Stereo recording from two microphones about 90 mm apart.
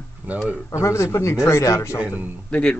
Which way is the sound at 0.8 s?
35° left (ahead or behind).